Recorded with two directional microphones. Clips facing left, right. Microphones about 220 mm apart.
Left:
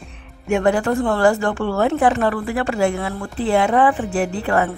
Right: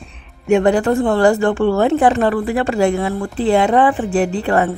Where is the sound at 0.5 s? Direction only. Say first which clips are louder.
Right 4 dB; 30° right (ahead or behind).